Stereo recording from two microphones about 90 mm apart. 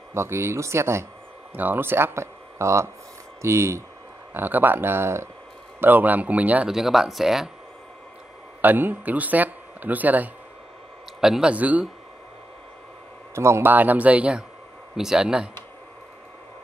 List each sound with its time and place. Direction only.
0.1 s speech: 30° right (ahead or behind)
6.7 s speech: 5° right (ahead or behind)
8.5 s speech: 20° right (ahead or behind)
11.1 s speech: 5° right (ahead or behind)
11.5 s speech: 15° right (ahead or behind)
13.3 s speech: 30° right (ahead or behind); by 15.5 s 5° right (ahead or behind)